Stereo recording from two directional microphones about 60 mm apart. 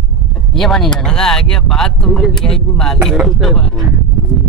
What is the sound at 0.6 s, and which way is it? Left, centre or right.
Speech, centre.